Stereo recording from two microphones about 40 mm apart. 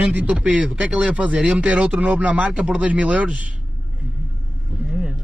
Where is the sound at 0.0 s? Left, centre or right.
Right.